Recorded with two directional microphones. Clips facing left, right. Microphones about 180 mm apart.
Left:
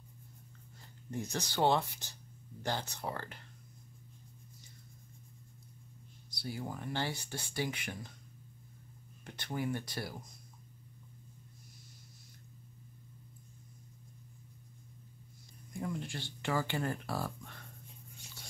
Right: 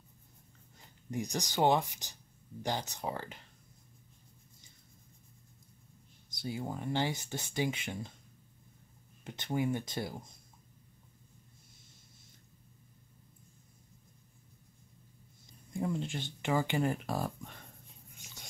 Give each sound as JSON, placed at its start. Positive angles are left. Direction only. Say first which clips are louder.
{"t": 1.1, "sound": "speech", "louder": "right 2 dB", "side_deg": -15}
{"t": 6.4, "sound": "speech", "louder": "right 3 dB", "side_deg": -20}
{"t": 9.2, "sound": "speech", "louder": "right 4 dB", "side_deg": -20}
{"t": 15.8, "sound": "speech", "louder": "right 4 dB", "side_deg": -25}